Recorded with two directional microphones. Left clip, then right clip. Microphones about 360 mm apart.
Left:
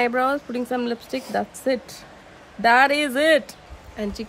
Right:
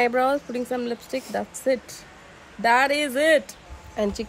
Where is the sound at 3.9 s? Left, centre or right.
Centre.